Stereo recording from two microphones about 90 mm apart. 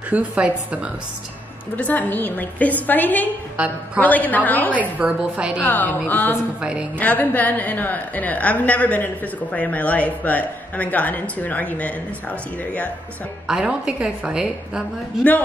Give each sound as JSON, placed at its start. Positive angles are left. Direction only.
{"t": 0.1, "sound": "a woman's voice", "side_deg": -15}
{"t": 1.8, "sound": "a woman's voice", "side_deg": 20}
{"t": 3.5, "sound": "a woman's voice", "side_deg": -15}
{"t": 4.0, "sound": "a woman's voice", "side_deg": 20}
{"t": 4.7, "sound": "a woman's voice", "side_deg": -15}
{"t": 5.6, "sound": "a woman's voice", "side_deg": 20}
{"t": 6.6, "sound": "a woman's voice", "side_deg": -10}
{"t": 7.0, "sound": "a woman's voice", "side_deg": 15}
{"t": 13.5, "sound": "a woman's voice", "side_deg": -10}